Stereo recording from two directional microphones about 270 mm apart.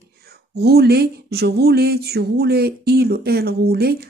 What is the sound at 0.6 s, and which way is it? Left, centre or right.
Speech, right.